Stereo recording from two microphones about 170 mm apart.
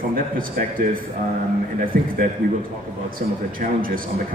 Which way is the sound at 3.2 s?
50° right (ahead or behind).